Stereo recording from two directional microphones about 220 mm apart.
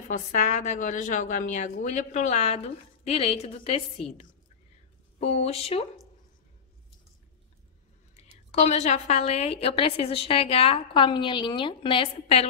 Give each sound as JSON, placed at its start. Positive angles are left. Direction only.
{"t": 0.1, "sound": "a woman's voice", "side_deg": 35}
{"t": 5.2, "sound": "a woman's voice", "side_deg": 30}
{"t": 8.2, "sound": "a woman's voice", "side_deg": 30}